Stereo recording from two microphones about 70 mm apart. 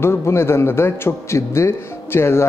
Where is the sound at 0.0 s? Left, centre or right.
Left.